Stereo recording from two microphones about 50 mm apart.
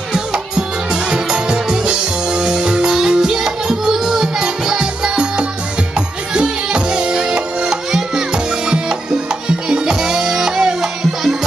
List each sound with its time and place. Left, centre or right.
0.1 s music: centre